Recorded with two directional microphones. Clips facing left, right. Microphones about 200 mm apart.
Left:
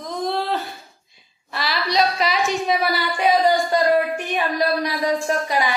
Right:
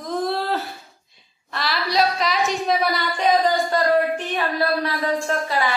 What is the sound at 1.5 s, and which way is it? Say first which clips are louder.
A woman's voice: left 1 dB; centre (ahead or behind).